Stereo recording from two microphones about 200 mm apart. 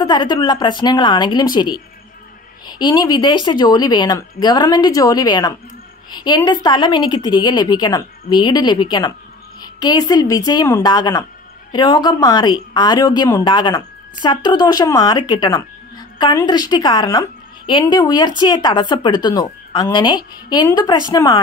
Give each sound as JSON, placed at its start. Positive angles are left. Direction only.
{"t": 0.0, "sound": "a woman's voice", "side_deg": 20}